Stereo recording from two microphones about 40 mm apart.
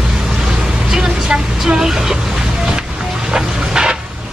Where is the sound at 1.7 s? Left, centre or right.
Centre.